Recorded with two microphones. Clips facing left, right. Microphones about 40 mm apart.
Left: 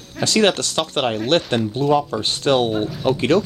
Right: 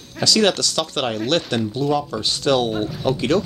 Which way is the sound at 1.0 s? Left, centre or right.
Centre.